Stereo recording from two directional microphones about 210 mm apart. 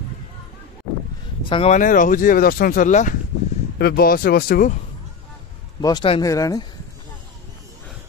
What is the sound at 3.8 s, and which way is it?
Speech, 50° left (ahead or behind).